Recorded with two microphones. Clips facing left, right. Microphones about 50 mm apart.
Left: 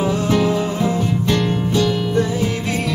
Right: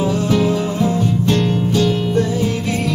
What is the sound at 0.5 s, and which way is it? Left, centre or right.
Music, centre.